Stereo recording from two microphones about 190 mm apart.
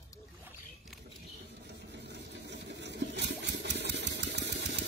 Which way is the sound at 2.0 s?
65° right (ahead or behind).